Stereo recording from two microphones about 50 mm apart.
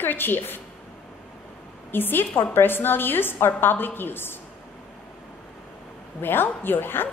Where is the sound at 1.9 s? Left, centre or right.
Left.